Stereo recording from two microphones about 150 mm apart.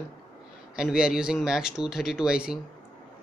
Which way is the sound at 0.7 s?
5° right (ahead or behind).